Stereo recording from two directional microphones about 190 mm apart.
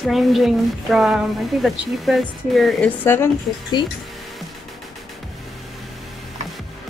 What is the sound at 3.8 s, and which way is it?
Speech, 25° left (ahead or behind).